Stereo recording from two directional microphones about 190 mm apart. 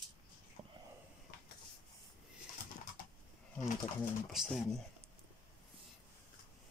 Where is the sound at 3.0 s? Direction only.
45° left (ahead or behind).